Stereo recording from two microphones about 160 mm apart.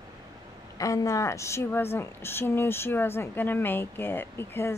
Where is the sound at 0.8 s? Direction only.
20° left (ahead or behind).